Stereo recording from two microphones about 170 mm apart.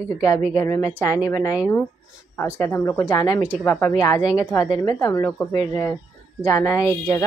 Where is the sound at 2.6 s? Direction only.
15° left (ahead or behind).